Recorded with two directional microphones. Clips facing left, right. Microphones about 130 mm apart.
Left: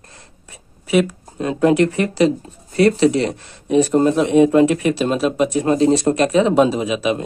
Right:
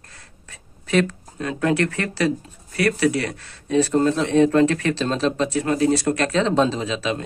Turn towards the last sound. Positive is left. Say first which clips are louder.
# left 5 dB
turn(degrees=15)  # may be behind; listen again after turning